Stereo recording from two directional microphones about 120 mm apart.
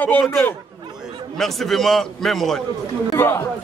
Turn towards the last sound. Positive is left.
turn(degrees=20)  # may be behind; listen again after turning